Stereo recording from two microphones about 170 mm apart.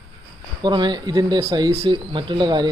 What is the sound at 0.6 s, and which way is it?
Speech, 25° right (ahead or behind).